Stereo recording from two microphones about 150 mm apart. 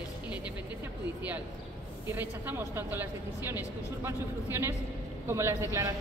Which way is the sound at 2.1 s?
15° right (ahead or behind).